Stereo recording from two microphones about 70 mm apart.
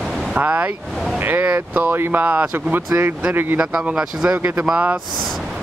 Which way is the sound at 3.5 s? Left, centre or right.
Centre.